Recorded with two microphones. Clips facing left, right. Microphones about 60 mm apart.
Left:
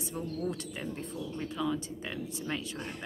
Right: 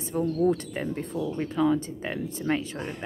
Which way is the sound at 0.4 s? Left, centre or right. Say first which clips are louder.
Right 11 dB; right.